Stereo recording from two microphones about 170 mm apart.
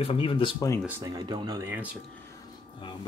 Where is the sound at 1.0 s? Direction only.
20° right (ahead or behind).